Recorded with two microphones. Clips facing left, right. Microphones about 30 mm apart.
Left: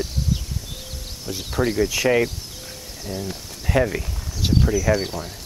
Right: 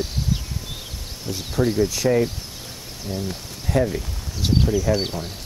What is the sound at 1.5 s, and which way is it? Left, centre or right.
Speech, centre.